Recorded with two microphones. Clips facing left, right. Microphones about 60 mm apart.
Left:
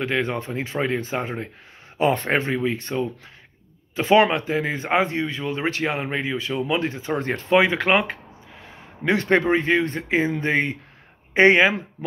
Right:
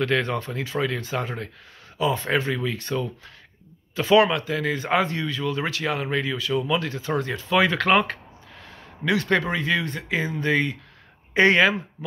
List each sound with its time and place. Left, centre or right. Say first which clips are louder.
0.0 s speech: right 1 dB; centre
2.0 s speech: left 3 dB; left
2.3 s speech: left 2 dB; left
7.2 s speech: left 4 dB; left
7.5 s speech: left 1 dB; left
9.0 s speech: left 3 dB; left